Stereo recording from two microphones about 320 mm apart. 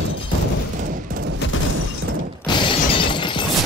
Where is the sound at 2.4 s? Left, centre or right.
Centre.